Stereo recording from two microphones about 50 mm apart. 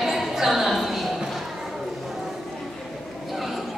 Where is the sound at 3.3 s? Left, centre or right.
Centre.